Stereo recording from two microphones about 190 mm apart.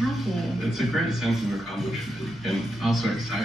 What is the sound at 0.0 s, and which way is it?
A woman's voice, centre (ahead or behind).